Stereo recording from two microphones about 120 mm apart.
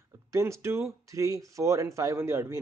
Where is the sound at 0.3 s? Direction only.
25° right (ahead or behind).